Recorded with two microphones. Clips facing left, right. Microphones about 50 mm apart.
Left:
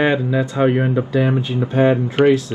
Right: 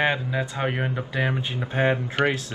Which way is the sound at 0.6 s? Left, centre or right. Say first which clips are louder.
Left 12 dB; centre.